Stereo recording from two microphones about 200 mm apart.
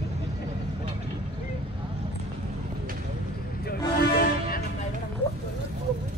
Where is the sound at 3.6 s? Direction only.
50° left (ahead or behind).